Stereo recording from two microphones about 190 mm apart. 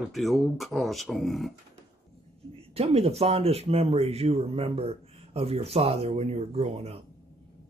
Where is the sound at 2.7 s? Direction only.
30° right (ahead or behind).